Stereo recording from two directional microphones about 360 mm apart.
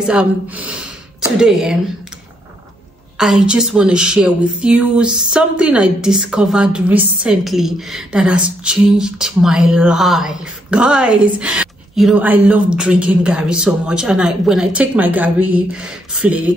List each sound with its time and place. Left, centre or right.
0.1 s speech: centre
3.2 s speech: centre